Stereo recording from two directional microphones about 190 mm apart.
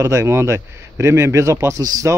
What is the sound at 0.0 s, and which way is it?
A man's voice, 15° right (ahead or behind).